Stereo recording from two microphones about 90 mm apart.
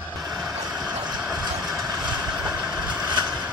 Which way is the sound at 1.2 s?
10° right (ahead or behind).